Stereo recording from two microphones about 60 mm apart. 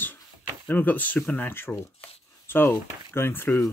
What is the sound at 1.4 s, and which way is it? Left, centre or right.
Speech, left.